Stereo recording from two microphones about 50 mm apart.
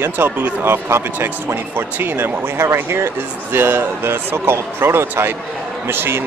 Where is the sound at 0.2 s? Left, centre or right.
Right.